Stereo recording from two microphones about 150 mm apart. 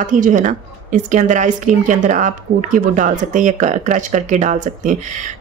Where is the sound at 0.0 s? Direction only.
60° right (ahead or behind).